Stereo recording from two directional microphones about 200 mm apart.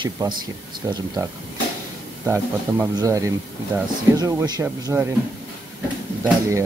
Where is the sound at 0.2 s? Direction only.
20° right (ahead or behind).